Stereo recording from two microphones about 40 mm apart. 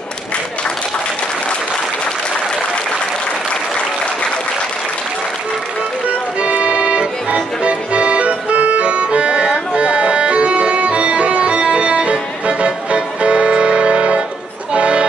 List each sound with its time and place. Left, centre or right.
6.4 s music: right
7.6 s accordion: right
9.8 s music: right